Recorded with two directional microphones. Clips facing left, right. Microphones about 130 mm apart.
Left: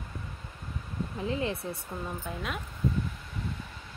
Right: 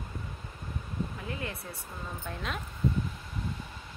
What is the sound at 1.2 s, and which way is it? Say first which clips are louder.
Speech: left 7 dB; 25° left (ahead or behind).